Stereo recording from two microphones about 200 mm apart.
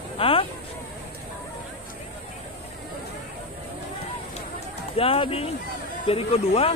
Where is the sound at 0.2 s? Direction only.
25° left (ahead or behind).